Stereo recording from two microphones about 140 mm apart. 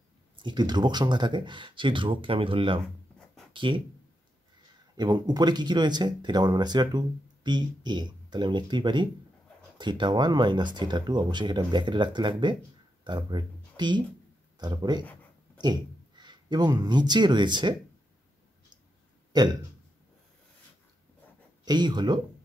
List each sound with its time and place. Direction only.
0.4 s speech: 30° right (ahead or behind)
4.9 s speech: 30° right (ahead or behind)
19.3 s speech: 30° right (ahead or behind)
21.6 s speech: 30° right (ahead or behind)